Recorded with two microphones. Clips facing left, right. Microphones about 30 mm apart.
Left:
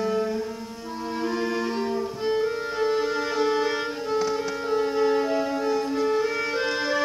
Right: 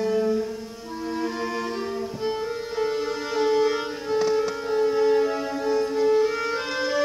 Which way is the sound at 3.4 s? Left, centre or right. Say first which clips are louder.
Right 4 dB; centre.